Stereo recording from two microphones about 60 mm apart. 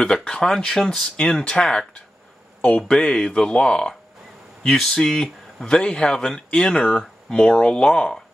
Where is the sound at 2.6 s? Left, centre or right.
Left.